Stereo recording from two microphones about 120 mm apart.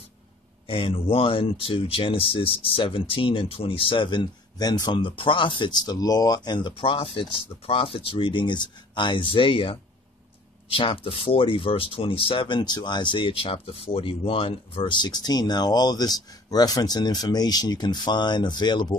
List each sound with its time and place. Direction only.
0.7 s speech: 45° left (ahead or behind)